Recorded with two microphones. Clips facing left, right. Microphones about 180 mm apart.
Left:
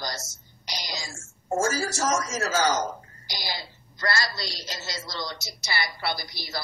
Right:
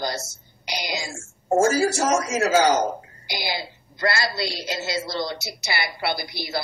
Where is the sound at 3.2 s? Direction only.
60° right (ahead or behind).